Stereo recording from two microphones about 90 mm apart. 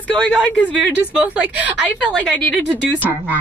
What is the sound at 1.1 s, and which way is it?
Speech, 15° right (ahead or behind).